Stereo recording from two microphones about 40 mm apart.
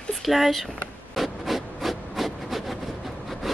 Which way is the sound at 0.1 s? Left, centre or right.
Centre.